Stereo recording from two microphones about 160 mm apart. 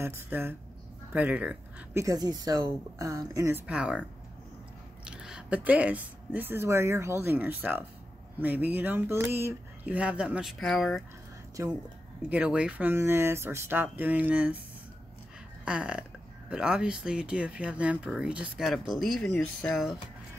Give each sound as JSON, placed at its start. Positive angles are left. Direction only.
{"t": 0.0, "sound": "speech", "side_deg": -15}
{"t": 2.0, "sound": "a woman's voice", "side_deg": -25}
{"t": 5.0, "sound": "speech", "side_deg": -5}
{"t": 11.6, "sound": "a woman's voice", "side_deg": -20}
{"t": 12.3, "sound": "speech", "side_deg": -5}
{"t": 15.6, "sound": "speech", "side_deg": -5}